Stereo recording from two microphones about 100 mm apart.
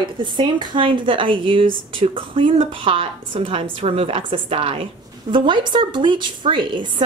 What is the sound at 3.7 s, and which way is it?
A woman's voice, 75° right (ahead or behind).